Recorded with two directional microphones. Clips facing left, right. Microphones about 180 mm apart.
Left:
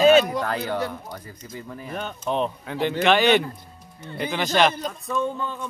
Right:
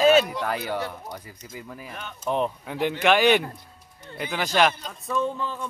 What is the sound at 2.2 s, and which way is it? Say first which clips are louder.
Speech: right 1 dB; 5° right (ahead or behind).